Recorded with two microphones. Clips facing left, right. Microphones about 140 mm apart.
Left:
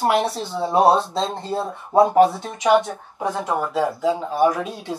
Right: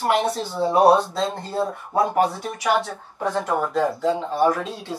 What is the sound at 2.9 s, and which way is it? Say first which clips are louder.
Speech: left 1 dB; 10° left (ahead or behind).